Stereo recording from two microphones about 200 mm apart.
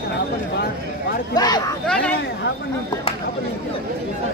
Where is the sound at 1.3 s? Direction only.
20° left (ahead or behind).